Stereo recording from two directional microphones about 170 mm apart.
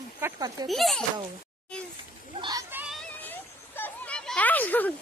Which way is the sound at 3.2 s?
10° left (ahead or behind).